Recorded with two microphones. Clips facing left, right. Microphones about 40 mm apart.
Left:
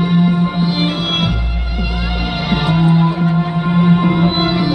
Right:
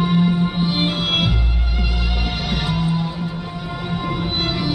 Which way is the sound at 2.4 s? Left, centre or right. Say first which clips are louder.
Left 9 dB; centre.